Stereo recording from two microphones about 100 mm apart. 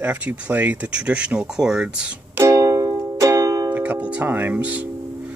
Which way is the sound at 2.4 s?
30° right (ahead or behind).